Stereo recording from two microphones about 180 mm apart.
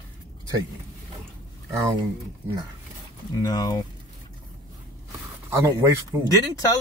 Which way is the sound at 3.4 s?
20° left (ahead or behind).